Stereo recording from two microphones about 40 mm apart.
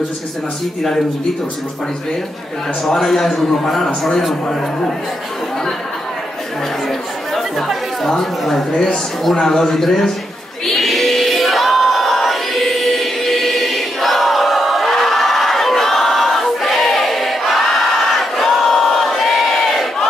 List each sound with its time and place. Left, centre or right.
2.8 s a man's voice: centre
7.3 s speech: centre
10.7 s a sound: centre